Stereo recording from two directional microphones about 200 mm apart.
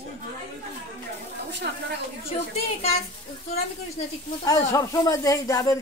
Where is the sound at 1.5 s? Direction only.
60° right (ahead or behind).